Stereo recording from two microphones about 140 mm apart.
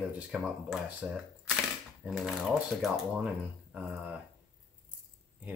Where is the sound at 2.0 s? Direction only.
5° right (ahead or behind).